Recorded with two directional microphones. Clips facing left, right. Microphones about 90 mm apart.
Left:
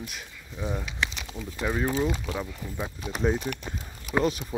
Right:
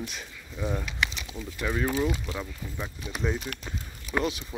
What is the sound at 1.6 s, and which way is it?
Speech, 25° left (ahead or behind).